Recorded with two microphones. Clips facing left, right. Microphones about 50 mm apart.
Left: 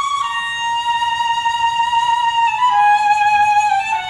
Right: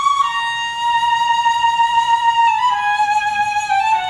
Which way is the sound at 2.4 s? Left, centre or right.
Centre.